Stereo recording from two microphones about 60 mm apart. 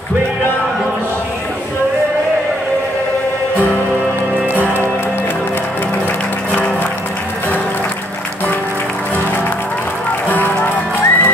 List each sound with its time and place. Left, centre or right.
10.3 s music: left